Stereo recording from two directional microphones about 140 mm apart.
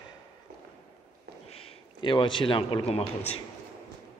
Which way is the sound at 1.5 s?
45° left (ahead or behind).